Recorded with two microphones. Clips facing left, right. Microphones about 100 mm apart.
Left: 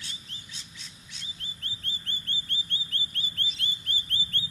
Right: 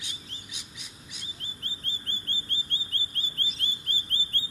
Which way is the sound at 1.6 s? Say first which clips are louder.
Even; 35° right (ahead or behind).